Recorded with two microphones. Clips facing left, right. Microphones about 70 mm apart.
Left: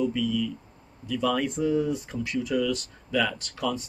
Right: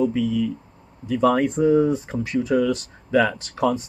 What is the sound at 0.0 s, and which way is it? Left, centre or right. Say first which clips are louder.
Speech: right 5 dB; right.